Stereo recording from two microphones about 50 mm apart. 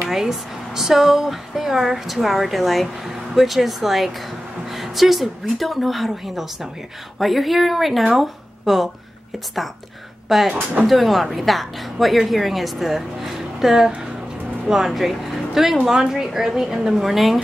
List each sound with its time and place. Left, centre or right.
0.0 s a woman's voice: centre
10.2 s speech: centre
10.5 s speech: right
10.9 s a woman's voice: centre